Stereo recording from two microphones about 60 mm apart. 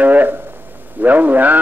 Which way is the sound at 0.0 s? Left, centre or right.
Right.